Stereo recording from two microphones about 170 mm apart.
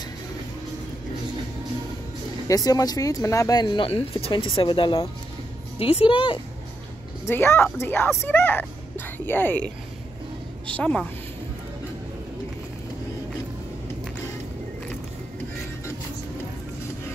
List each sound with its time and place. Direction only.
2.4 s a woman's voice: 20° left (ahead or behind)
7.2 s speech: 15° left (ahead or behind)
10.8 s speech: 5° left (ahead or behind)